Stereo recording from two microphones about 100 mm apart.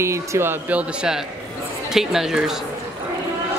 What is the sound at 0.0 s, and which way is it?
Speech, 30° right (ahead or behind).